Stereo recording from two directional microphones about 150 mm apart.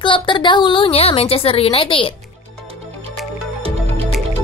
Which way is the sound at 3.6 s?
40° right (ahead or behind).